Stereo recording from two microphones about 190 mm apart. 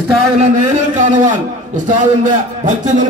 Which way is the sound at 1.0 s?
40° right (ahead or behind).